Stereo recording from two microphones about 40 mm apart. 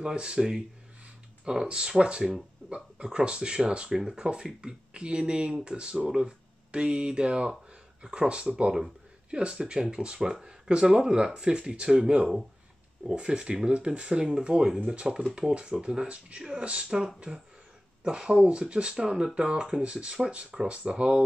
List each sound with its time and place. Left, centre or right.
0.0 s speech: right
14.5 s speech: right
14.9 s speech: centre